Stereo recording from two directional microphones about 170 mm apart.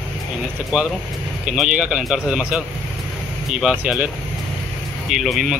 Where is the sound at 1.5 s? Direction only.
5° right (ahead or behind).